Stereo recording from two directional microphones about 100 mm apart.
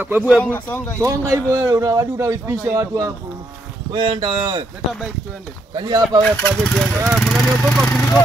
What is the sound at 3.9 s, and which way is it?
Speech, 60° right (ahead or behind).